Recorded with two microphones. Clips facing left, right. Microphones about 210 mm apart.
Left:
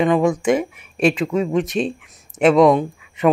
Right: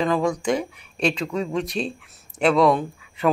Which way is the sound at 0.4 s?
5° left (ahead or behind).